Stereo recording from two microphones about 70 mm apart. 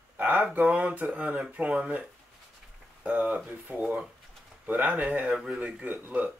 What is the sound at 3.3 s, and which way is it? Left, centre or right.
Speech, right.